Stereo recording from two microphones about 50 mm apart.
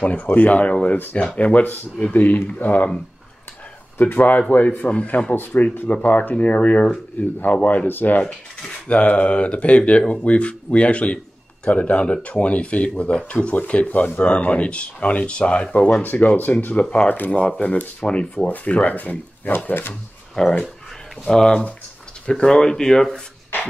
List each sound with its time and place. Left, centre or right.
0.0 s speech: left
4.0 s speech: left
5.3 s speech: left
9.1 s speech: left
16.0 s speech: left
16.8 s speech: centre
17.1 s speech: left
18.5 s speech: left
19.6 s speech: left
19.9 s speech: centre